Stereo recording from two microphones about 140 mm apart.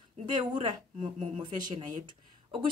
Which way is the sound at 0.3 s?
30° right (ahead or behind).